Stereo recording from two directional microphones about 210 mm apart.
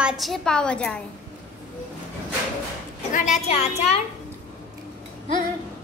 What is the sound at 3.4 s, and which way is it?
Speech, 30° left (ahead or behind).